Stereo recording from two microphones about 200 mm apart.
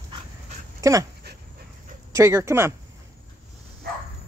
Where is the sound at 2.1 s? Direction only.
15° right (ahead or behind).